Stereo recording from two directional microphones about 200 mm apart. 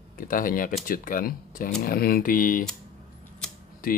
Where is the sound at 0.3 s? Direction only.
45° left (ahead or behind).